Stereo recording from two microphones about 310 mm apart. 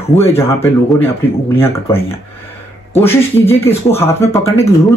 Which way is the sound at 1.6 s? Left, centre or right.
Centre.